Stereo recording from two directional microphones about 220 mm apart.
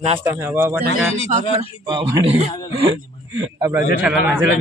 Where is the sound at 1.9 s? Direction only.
20° right (ahead or behind).